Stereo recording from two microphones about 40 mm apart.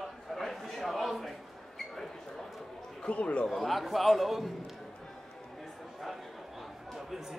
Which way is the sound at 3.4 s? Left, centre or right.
Centre.